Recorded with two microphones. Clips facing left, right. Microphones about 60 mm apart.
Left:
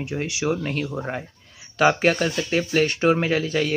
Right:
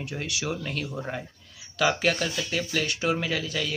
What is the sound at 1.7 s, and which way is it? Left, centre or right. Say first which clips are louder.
Speech: left 6 dB; left.